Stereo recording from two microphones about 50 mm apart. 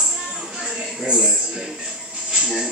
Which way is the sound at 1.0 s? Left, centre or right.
Centre.